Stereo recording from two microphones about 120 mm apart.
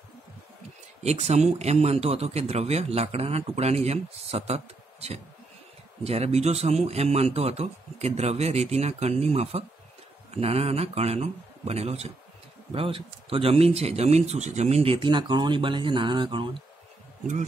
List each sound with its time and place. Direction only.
1.0 s a man's voice: 70° right (ahead or behind)
6.0 s a man's voice: 60° right (ahead or behind)
12.7 s speech: 50° right (ahead or behind)